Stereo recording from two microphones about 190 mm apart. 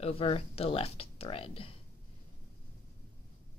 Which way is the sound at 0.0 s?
30° left (ahead or behind).